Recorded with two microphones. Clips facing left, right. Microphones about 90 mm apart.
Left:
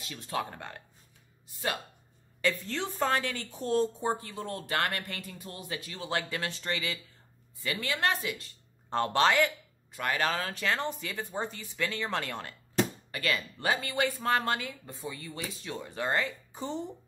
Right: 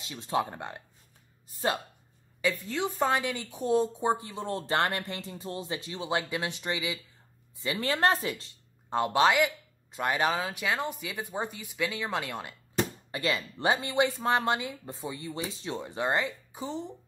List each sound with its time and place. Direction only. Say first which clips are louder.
0.0 s speech: right 5 dB; 20° right (ahead or behind)
1.5 s a sound: right 4 dB; 30° right (ahead or behind)
2.4 s a woman's voice: right 2 dB; 10° right (ahead or behind)
7.8 s speech: right 5 dB; 35° right (ahead or behind)
8.9 s speech: right 1 dB; 10° right (ahead or behind)
16.5 s speech: left 2 dB; centre (ahead or behind)